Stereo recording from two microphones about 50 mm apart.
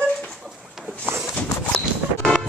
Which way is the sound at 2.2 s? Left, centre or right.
Centre.